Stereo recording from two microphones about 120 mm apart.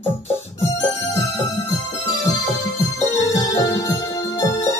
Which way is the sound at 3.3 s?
25° left (ahead or behind).